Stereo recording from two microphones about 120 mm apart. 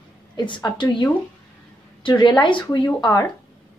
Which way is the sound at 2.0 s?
35° left (ahead or behind).